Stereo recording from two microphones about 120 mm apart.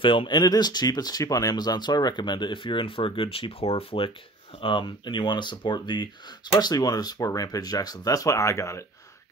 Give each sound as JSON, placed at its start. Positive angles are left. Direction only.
{"t": 0.0, "sound": "speech", "side_deg": 45}